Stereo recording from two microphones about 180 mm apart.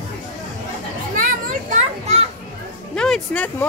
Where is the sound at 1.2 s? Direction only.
45° right (ahead or behind).